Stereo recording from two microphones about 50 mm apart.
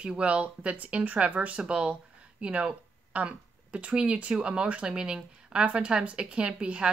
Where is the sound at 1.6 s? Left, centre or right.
Right.